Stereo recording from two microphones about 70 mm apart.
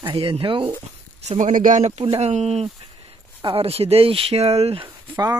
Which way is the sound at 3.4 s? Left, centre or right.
Right.